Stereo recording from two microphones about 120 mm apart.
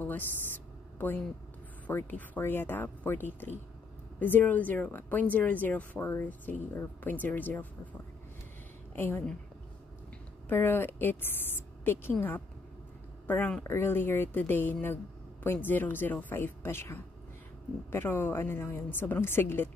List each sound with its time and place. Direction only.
0.0 s a sound: 15° left (ahead or behind)
1.9 s speech: 15° left (ahead or behind)
8.9 s speech: 15° left (ahead or behind)
10.5 s speech: 15° left (ahead or behind)